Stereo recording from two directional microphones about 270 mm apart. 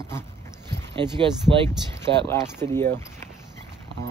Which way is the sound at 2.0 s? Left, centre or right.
Centre.